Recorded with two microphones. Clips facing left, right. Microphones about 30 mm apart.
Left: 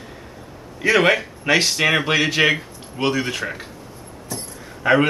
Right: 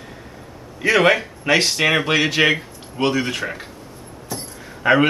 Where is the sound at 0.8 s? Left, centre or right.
Centre.